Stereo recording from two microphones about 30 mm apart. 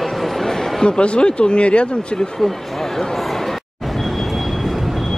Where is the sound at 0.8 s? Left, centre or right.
Left.